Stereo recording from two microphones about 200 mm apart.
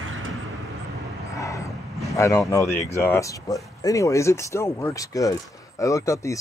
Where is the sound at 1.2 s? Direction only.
15° left (ahead or behind).